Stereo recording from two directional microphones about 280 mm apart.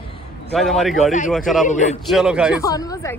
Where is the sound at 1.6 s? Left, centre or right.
Left.